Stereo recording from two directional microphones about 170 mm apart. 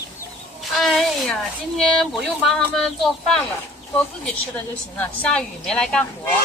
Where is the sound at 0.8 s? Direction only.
Centre (ahead or behind).